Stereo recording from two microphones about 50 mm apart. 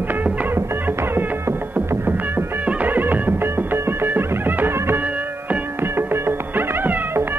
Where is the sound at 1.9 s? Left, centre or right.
Right.